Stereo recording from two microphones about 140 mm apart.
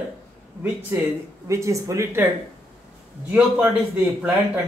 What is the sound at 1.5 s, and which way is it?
Speech, 20° right (ahead or behind).